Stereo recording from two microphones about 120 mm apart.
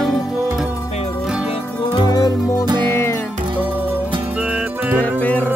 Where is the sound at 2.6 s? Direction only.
35° right (ahead or behind).